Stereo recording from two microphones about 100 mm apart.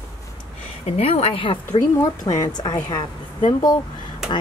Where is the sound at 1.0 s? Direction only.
80° left.